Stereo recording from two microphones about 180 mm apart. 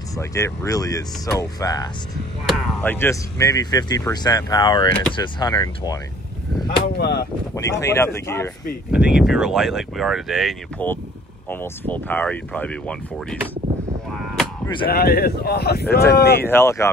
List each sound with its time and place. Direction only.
0.2 s speech: 15° left (ahead or behind)
2.4 s speech: 5° left (ahead or behind); by 5.9 s 25° left (ahead or behind)
6.9 s speech: 65° left (ahead or behind)
7.5 s speech: 15° left (ahead or behind)
8.9 s speech: 5° right (ahead or behind)
14.1 s artillery fire: centre (ahead or behind)
14.9 s speech: 60° left (ahead or behind)
16.4 s speech: 15° left (ahead or behind)